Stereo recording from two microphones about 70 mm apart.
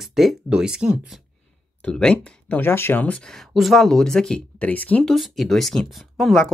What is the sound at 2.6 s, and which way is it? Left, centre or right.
Speech, left.